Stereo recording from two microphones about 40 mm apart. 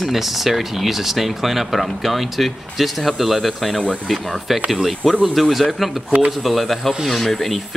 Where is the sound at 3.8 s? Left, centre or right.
Left.